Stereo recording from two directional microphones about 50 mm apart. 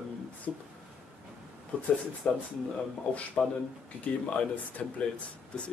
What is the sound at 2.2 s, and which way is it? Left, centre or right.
Speech, left.